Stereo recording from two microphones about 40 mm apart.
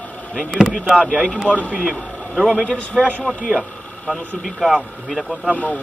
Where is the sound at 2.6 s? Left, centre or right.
Left.